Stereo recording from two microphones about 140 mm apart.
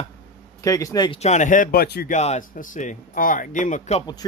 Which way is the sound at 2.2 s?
55° left (ahead or behind).